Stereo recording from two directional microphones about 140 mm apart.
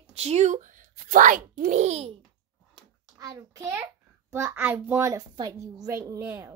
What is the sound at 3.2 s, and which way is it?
A child's voice, 25° right (ahead or behind).